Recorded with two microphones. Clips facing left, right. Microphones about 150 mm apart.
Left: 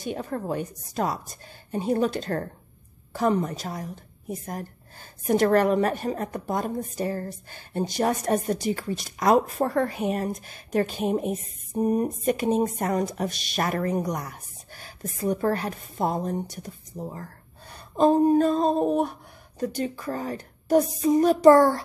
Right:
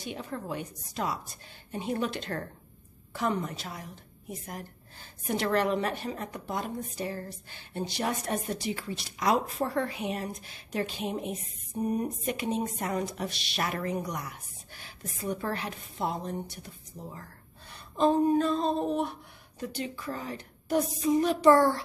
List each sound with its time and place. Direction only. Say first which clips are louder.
0.0 s a woman's voice: left 7 dB; 45° left (ahead or behind)